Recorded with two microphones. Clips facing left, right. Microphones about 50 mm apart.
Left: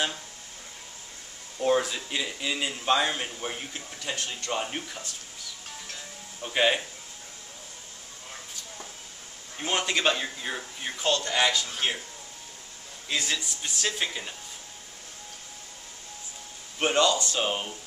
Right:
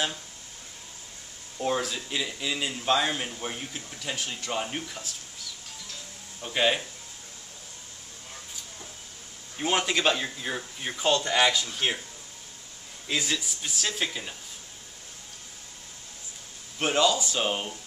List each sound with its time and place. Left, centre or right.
1.6 s a man's voice: centre
6.4 s speech: centre
9.6 s a man's voice: centre
11.1 s speech: centre
13.1 s a man's voice: centre
16.7 s a man's voice: centre